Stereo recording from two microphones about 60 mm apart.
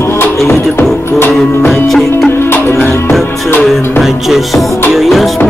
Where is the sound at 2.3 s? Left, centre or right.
Left.